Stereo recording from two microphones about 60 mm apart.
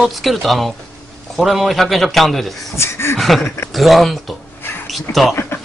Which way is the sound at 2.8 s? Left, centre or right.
Left.